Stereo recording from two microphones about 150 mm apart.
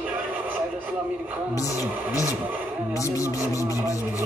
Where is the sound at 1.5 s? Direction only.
20° left (ahead or behind).